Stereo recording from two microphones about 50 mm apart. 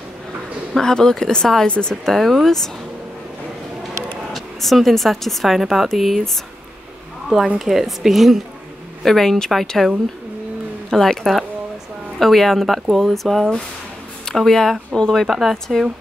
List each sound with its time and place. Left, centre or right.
0.7 s speech: centre
2.0 s speech: centre
4.3 s speech: centre
7.5 s speech: centre
9.0 s speech: centre